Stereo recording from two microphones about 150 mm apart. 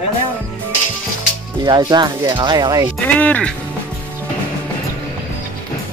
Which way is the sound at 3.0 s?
10° left (ahead or behind).